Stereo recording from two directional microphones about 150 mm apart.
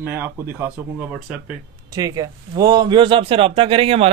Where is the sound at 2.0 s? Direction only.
25° right (ahead or behind).